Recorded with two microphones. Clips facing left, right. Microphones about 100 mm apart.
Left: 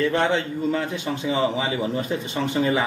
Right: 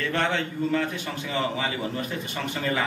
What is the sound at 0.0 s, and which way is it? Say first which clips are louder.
A man's voice: left 5 dB; 15° left (ahead or behind).